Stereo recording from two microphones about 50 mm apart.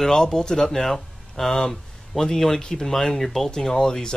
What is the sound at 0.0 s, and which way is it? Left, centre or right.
Speech, centre.